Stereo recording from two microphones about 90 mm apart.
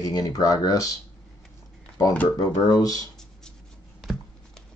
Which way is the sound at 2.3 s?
45° left (ahead or behind).